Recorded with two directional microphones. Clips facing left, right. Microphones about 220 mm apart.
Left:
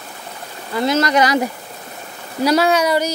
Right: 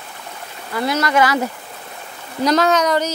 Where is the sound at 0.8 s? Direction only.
25° left (ahead or behind).